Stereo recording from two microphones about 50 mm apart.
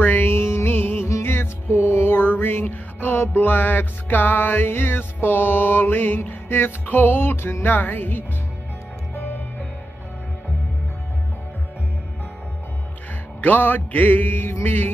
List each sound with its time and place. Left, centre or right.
0.0 s music: left
13.4 s music: left